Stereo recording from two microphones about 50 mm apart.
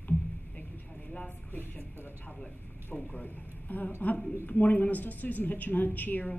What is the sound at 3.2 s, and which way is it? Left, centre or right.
A man's voice, left.